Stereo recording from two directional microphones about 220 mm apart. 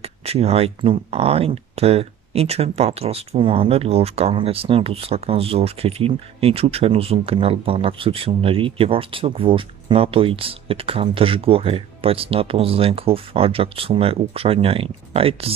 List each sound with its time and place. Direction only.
0.0 s speech: 25° right (ahead or behind)